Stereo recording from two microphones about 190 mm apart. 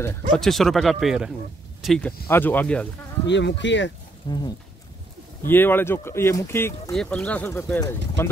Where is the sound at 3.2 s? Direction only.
70° left (ahead or behind).